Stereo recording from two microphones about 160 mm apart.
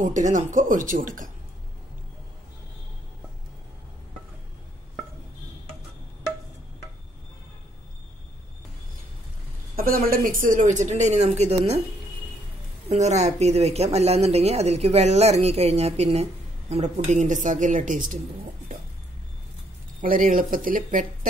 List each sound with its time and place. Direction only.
0.0 s a woman's voice: 50° right (ahead or behind)
9.8 s a woman's voice: 65° right (ahead or behind); by 11.8 s 40° right (ahead or behind)
12.8 s a woman's voice: 45° right (ahead or behind)
20.0 s speech: 55° right (ahead or behind)